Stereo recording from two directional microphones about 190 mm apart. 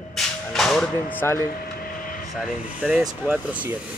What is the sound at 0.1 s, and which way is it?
Whip, centre (ahead or behind).